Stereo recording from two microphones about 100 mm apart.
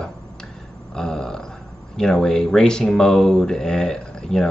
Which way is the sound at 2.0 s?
5° left (ahead or behind).